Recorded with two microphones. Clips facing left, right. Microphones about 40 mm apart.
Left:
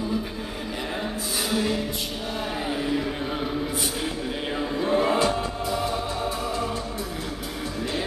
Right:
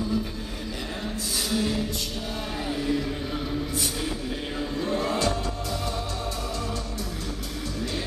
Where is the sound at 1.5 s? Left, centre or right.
Centre.